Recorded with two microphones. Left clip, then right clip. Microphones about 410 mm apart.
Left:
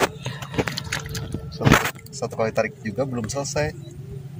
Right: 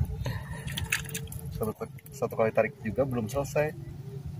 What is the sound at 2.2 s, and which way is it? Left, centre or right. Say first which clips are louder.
Speech: left 3 dB; right.